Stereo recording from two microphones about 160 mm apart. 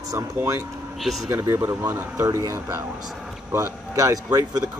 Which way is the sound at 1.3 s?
15° right (ahead or behind).